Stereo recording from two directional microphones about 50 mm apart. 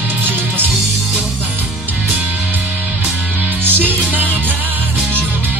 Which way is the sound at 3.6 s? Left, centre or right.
Right.